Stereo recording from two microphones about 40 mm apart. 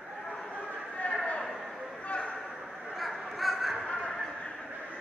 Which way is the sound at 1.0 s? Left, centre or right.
Left.